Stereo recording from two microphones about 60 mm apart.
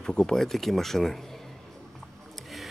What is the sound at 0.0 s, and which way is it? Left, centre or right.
Speech, centre.